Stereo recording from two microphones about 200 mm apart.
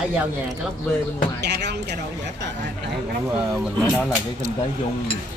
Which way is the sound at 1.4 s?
55° right (ahead or behind).